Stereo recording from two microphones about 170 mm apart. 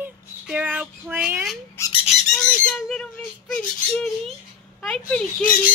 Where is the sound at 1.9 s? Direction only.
35° left (ahead or behind).